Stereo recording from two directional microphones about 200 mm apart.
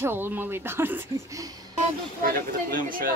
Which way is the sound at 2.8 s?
45° right (ahead or behind).